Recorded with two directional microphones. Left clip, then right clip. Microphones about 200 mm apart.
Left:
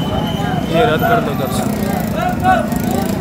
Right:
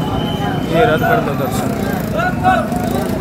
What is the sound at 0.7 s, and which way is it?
Speech, 5° left (ahead or behind).